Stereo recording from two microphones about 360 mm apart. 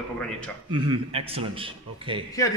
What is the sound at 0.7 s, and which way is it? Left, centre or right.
Speech, centre.